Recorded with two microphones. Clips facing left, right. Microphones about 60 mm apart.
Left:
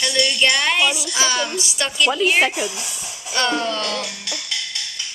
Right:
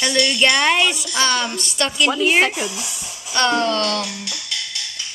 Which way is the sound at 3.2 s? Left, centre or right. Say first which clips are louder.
Right 3 dB; centre.